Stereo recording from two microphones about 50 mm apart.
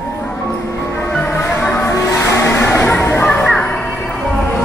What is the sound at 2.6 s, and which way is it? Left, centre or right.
Music, left.